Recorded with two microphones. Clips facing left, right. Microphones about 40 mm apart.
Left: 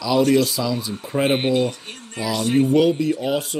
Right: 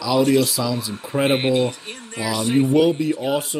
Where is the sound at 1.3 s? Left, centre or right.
Right.